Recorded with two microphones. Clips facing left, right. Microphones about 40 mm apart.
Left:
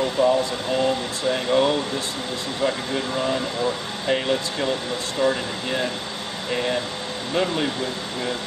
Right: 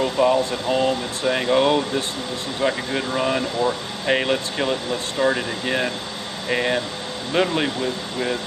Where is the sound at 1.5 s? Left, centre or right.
Right.